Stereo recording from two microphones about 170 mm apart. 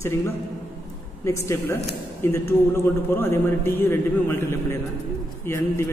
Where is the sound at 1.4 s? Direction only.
15° left (ahead or behind).